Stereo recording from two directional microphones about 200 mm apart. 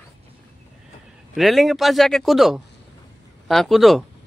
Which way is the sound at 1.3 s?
Centre (ahead or behind).